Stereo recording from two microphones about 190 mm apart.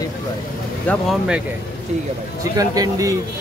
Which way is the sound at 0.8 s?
5° left (ahead or behind).